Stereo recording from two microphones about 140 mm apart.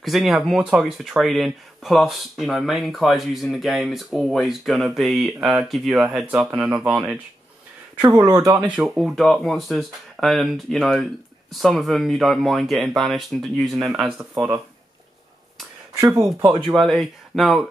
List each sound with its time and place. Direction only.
0.0 s speech: centre (ahead or behind)
8.0 s speech: 25° right (ahead or behind)
8.6 s speech: 5° right (ahead or behind)
16.0 s speech: 20° right (ahead or behind)
16.6 s speech: centre (ahead or behind)